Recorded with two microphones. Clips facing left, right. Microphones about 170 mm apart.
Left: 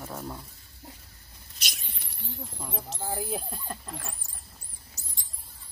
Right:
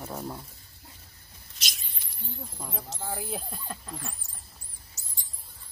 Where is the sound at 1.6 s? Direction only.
65° left (ahead or behind); by 2.4 s 80° left.